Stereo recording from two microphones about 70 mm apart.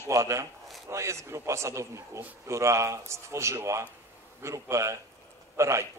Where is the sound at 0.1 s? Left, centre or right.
Right.